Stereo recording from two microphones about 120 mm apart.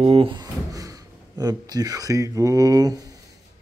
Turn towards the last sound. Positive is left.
turn(degrees=-30)  # may be behind; listen again after turning